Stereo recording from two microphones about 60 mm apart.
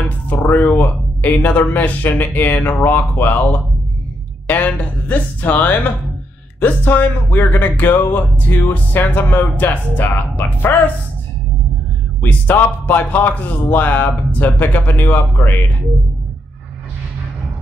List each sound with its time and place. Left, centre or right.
0.0 s a sound: left
1.2 s speech: left
12.3 s speech: left